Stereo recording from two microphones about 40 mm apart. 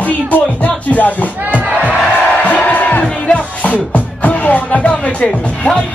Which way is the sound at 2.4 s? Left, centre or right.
Left.